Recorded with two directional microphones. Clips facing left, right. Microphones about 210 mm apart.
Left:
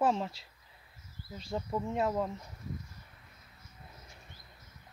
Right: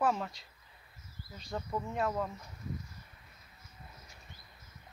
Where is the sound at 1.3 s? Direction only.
25° left (ahead or behind).